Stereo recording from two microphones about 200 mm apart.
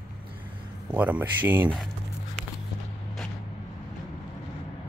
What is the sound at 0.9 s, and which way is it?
Speech, 10° right (ahead or behind).